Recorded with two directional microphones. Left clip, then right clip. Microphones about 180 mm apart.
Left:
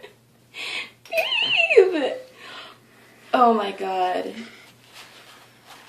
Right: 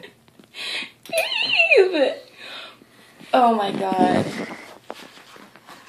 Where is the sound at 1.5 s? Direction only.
15° right (ahead or behind).